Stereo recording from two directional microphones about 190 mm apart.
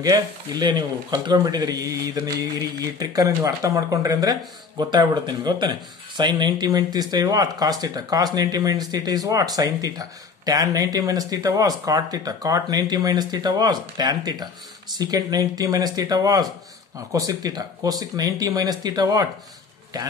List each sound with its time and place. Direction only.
0.0 s speech: 20° right (ahead or behind)